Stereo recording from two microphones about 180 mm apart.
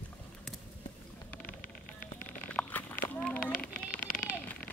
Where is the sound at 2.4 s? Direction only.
10° left (ahead or behind).